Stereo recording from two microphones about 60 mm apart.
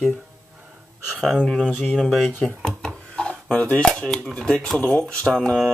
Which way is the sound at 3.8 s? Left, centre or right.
Centre.